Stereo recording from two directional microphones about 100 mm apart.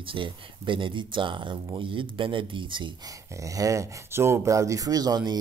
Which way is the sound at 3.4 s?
35° right (ahead or behind).